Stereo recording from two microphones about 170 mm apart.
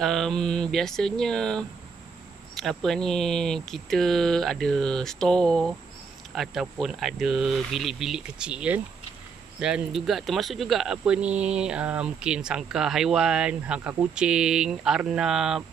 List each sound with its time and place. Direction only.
0.0 s speech: centre (ahead or behind)